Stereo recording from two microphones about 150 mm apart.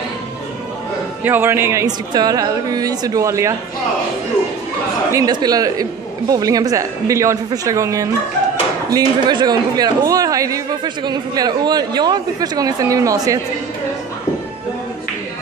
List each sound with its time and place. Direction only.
1.2 s speech: 15° right (ahead or behind)
5.1 s speech: 25° right (ahead or behind)